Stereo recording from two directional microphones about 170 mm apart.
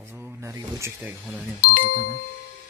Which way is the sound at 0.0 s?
15° right (ahead or behind).